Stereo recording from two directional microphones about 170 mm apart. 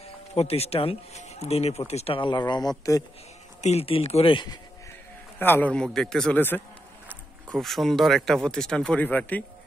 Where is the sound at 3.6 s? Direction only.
40° left (ahead or behind).